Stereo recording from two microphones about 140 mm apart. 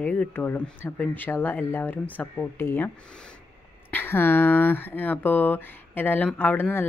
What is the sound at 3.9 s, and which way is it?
Speech, 15° left (ahead or behind).